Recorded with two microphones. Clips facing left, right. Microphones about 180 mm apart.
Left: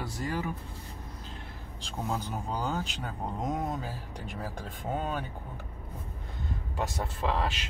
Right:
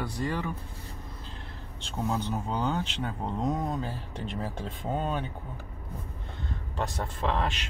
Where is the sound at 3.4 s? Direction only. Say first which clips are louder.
Right 2 dB; 20° left (ahead or behind).